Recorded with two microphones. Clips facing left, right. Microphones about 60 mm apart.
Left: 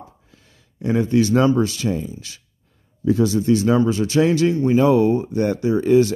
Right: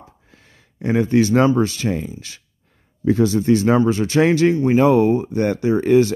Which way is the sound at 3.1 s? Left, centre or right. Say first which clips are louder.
Right 1 dB; right.